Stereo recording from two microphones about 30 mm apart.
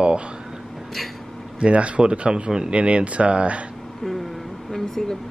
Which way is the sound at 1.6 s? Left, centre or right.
Right.